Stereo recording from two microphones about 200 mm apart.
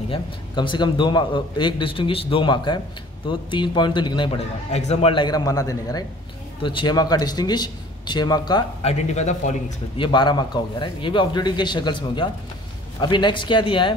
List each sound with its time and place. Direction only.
0.1 s a man's voice: 25° left (ahead or behind)
8.9 s a man's voice: 35° left (ahead or behind)
9.9 s a man's voice: 25° left (ahead or behind)